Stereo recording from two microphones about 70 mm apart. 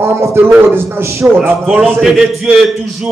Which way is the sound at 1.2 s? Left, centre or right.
Right.